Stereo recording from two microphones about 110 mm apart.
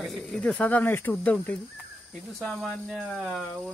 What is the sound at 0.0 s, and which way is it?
Speech, centre (ahead or behind).